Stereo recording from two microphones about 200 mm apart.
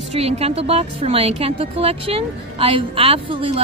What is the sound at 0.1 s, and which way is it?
A woman's voice, 30° right (ahead or behind).